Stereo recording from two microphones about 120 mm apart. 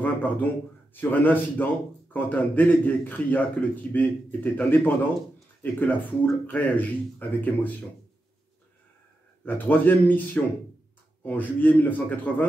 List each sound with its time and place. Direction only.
0.0 s a man's voice: 15° left (ahead or behind)
9.4 s speech: 15° left (ahead or behind)